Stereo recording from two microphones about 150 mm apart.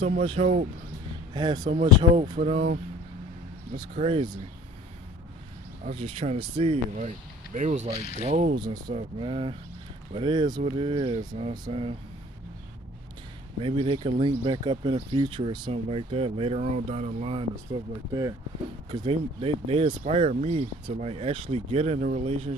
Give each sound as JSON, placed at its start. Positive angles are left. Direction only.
{"t": 0.2, "sound": "speech", "side_deg": -40}
{"t": 1.3, "sound": "speech", "side_deg": -30}
{"t": 3.9, "sound": "speech", "side_deg": -40}
{"t": 5.9, "sound": "speech", "side_deg": -40}
{"t": 8.5, "sound": "speech", "side_deg": -30}
{"t": 13.6, "sound": "speech", "side_deg": -35}
{"t": 18.9, "sound": "speech", "side_deg": -35}